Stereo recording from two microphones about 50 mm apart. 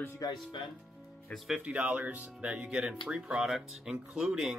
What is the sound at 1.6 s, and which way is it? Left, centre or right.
Speech, right.